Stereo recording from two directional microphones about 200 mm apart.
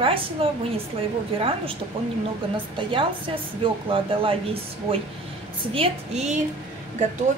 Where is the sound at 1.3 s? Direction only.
25° right (ahead or behind).